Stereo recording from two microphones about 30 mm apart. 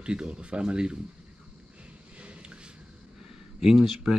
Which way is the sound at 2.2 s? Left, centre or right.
Right.